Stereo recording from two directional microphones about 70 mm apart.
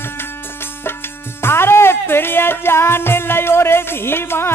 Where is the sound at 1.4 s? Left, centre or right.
Left.